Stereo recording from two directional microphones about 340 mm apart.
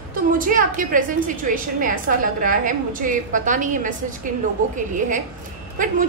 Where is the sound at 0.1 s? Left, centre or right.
Right.